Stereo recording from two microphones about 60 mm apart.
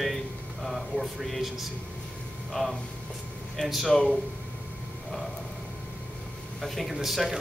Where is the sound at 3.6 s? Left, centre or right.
Centre.